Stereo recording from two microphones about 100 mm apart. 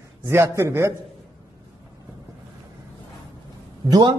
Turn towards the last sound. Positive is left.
turn(degrees=-50)  # may be behind; listen again after turning